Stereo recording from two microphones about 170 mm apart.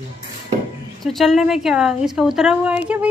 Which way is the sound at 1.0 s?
Centre (ahead or behind).